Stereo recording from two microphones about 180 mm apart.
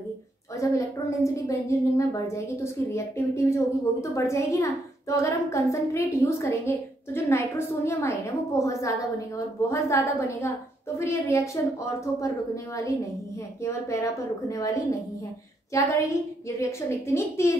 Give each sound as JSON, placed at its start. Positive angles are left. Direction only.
{"t": 0.6, "sound": "a woman's voice", "side_deg": 15}